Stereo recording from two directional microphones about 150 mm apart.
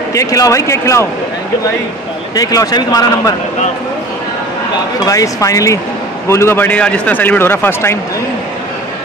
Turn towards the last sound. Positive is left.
turn(degrees=15)  # may be behind; listen again after turning